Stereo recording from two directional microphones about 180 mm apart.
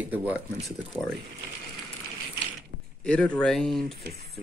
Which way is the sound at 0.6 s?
5° left (ahead or behind).